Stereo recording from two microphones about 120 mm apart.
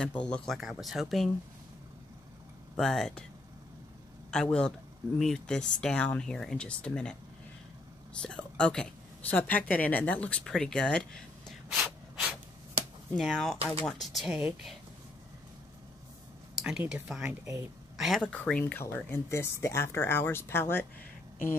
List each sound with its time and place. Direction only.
0.0 s speech: 10° left (ahead or behind)
2.7 s speech: 5° left (ahead or behind)
4.3 s speech: 5° left (ahead or behind)
8.2 s speech: 5° left (ahead or behind)
11.7 s snort: 10° right (ahead or behind)
13.1 s speech: centre (ahead or behind)
16.5 s a sound: 5° right (ahead or behind)
16.8 s speech: 10° right (ahead or behind)
17.9 s speech: centre (ahead or behind)
18.2 s speech: 10° left (ahead or behind)